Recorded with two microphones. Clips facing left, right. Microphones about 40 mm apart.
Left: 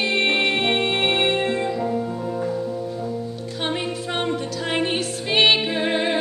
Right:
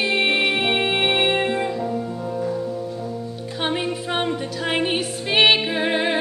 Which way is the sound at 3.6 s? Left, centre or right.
Centre.